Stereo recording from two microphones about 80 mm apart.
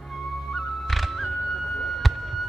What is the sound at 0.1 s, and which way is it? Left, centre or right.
Music, centre.